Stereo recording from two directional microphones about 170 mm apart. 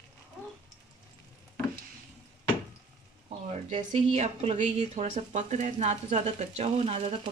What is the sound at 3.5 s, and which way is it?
Speech, 45° right (ahead or behind).